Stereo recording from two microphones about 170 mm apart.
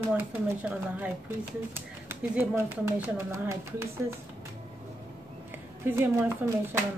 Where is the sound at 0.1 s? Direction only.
10° right (ahead or behind).